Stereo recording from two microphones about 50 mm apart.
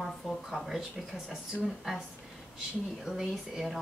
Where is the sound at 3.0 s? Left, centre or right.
Centre.